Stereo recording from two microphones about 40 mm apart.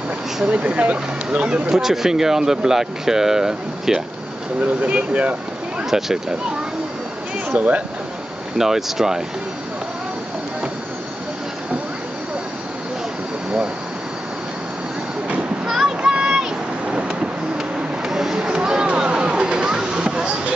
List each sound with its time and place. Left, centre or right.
0.5 s speech: right
1.5 s speech: centre
4.8 s speech: right
5.9 s speech: centre
7.4 s speech: right
8.5 s speech: centre
15.6 s a sound: centre